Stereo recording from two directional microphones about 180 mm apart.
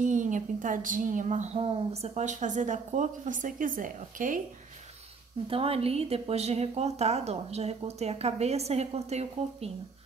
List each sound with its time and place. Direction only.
0.0 s a woman's voice: 45° right (ahead or behind)
5.5 s a woman's voice: 35° right (ahead or behind)